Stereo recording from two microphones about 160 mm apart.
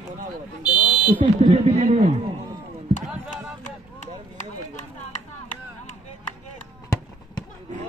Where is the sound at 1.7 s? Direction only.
45° right (ahead or behind).